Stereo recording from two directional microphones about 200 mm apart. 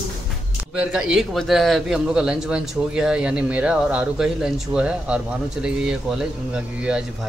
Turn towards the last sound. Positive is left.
turn(degrees=-5)  # may be behind; listen again after turning